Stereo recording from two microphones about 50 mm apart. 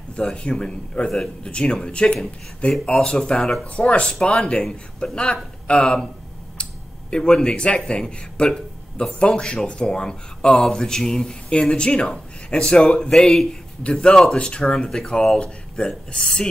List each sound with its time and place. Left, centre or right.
0.1 s a man's voice: centre
6.6 s a sound: centre
7.8 s a man's voice: centre
13.1 s a man's voice: centre
14.9 s speech: centre